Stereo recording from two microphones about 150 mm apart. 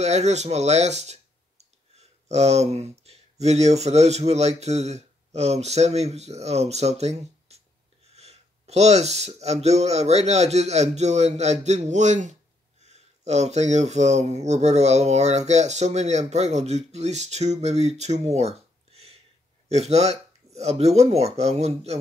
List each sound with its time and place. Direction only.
0.0 s speech: 50° right (ahead or behind)